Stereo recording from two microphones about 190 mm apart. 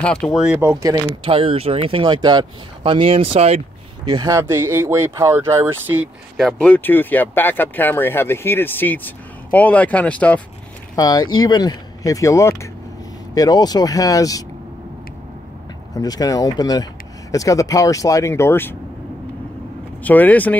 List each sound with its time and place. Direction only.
0.0 s speech: 5° left (ahead or behind)
0.6 s speech: 15° right (ahead or behind)
1.2 s speech: 30° right (ahead or behind)
4.1 s speech: 20° right (ahead or behind)
6.3 s speech: 5° left (ahead or behind)
11.0 s speech: 20° left (ahead or behind)
15.9 s speech: 20° left (ahead or behind)
20.0 s speech: 10° left (ahead or behind)